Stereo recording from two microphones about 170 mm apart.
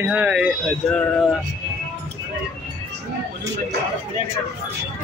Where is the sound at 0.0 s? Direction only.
10° right (ahead or behind).